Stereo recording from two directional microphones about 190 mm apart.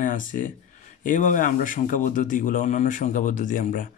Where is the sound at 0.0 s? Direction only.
45° left (ahead or behind).